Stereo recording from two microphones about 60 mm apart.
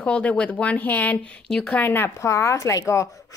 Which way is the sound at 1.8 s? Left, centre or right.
Left.